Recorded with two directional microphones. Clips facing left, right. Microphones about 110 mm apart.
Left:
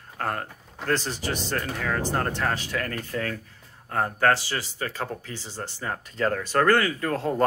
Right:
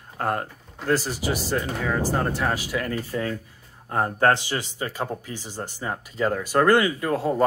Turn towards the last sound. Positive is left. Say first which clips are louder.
# right 2 dB
turn(degrees=-10)  # may be behind; listen again after turning